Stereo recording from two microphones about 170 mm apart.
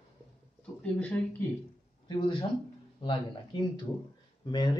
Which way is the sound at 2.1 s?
30° left (ahead or behind).